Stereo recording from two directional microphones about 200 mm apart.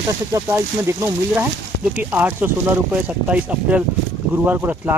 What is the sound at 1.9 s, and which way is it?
Speech, 10° right (ahead or behind).